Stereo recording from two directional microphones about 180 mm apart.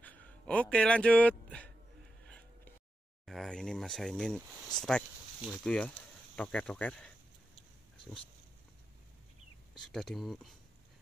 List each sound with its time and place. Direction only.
0.0 s a sound: 10° left (ahead or behind)
3.3 s speech: 5° left (ahead or behind)
9.8 s speech: 5° left (ahead or behind)